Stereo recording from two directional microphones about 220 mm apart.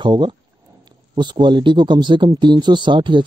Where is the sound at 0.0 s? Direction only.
20° right (ahead or behind).